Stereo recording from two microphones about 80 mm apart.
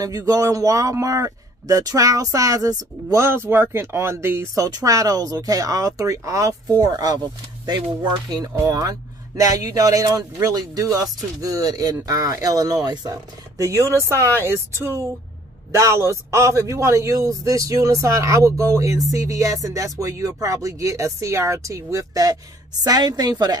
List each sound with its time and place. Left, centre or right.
0.0 s a man's voice: right
3.3 s a man's voice: right
4.6 s a man's voice: right
6.8 s a man's voice: right
8.6 s a man's voice: right